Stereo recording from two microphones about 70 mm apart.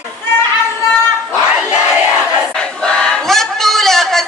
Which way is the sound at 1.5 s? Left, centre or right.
Centre.